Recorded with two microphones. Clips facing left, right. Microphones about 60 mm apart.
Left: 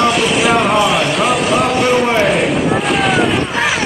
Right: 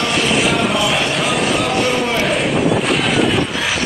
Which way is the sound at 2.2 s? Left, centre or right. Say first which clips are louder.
Left 2 dB; centre.